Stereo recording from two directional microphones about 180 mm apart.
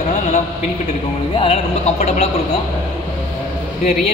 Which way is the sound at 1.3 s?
30° left (ahead or behind).